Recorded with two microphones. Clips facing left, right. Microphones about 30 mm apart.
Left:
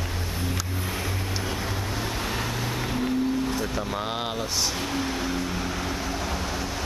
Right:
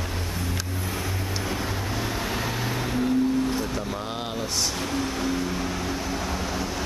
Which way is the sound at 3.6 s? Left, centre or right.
Centre.